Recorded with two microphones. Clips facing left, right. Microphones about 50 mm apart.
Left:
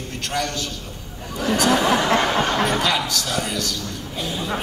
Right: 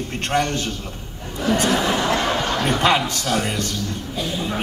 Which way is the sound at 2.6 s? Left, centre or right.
Right.